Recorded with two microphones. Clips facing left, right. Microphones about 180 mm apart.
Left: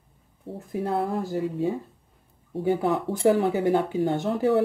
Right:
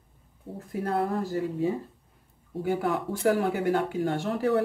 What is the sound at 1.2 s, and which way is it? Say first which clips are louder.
Speech: left 1 dB; 20° left (ahead or behind).